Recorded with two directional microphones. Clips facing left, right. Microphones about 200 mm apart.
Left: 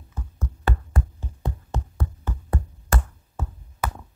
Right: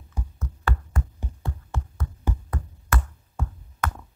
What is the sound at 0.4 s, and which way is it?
Music, 30° left (ahead or behind).